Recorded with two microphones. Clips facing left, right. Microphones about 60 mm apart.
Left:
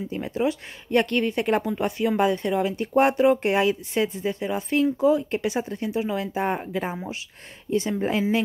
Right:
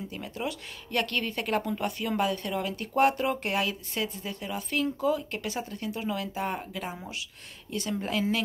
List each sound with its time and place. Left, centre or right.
0.1 s speech: left